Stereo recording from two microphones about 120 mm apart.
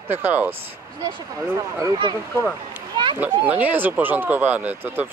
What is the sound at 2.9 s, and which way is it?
Children playing, 40° right (ahead or behind).